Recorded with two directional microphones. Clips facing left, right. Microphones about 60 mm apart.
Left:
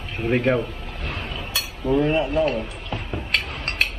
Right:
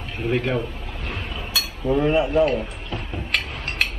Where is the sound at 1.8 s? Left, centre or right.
Centre.